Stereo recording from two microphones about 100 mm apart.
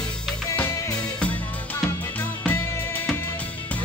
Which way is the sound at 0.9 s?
10° left (ahead or behind).